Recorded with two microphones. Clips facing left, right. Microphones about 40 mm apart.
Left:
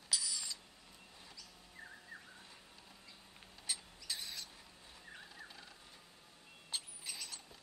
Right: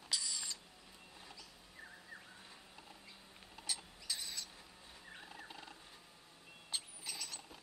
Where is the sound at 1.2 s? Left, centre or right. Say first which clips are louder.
Right 2 dB; centre.